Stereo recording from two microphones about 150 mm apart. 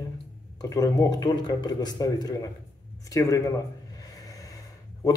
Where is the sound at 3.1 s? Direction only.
20° left (ahead or behind).